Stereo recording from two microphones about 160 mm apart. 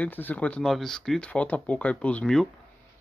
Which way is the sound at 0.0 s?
10° left (ahead or behind).